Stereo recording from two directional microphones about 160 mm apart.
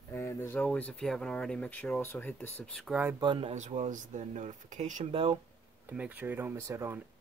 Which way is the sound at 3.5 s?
45° right (ahead or behind).